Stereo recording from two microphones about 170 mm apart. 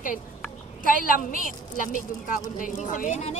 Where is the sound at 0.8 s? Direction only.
55° left (ahead or behind).